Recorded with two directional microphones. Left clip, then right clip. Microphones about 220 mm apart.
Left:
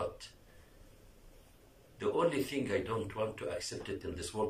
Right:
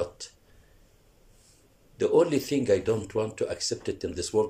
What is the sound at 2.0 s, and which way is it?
Speech, 55° right (ahead or behind).